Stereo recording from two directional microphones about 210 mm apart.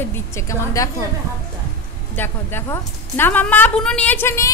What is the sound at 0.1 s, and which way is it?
Speech, 15° left (ahead or behind).